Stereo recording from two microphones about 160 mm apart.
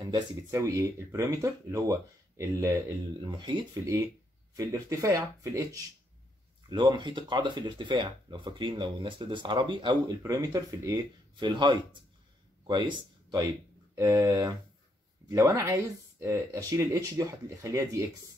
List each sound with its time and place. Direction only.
0.0 s speech: 20° right (ahead or behind)
6.7 s speech: 30° right (ahead or behind)